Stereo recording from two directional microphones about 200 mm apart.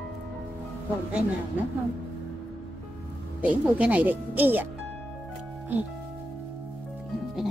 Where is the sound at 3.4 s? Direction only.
5° right (ahead or behind).